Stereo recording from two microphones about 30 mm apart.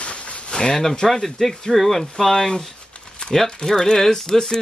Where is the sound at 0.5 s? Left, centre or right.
Left.